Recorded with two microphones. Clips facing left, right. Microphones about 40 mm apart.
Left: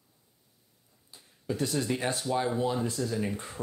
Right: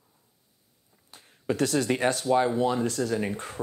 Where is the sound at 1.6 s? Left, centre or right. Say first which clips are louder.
Right 5 dB; right.